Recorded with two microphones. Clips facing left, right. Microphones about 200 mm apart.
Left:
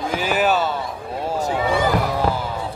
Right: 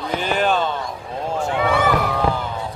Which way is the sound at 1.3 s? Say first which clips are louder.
Even; 40° left (ahead or behind).